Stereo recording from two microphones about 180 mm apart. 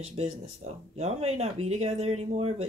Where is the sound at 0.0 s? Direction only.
35° right (ahead or behind).